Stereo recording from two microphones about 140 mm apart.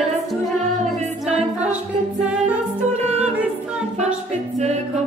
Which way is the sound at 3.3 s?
5° right (ahead or behind).